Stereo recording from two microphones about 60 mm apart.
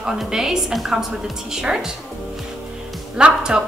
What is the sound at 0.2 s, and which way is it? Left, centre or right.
A woman's voice, centre.